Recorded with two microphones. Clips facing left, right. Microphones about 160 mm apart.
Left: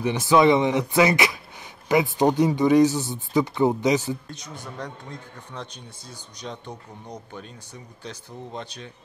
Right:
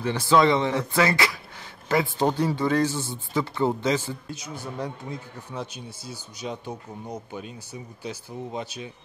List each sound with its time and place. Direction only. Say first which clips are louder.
0.0 s speech: left 2 dB; 20° left (ahead or behind)
4.3 s speech: right 3 dB; 5° right (ahead or behind)